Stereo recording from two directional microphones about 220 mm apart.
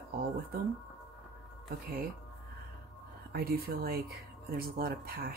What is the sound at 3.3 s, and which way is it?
Speech, 45° right (ahead or behind).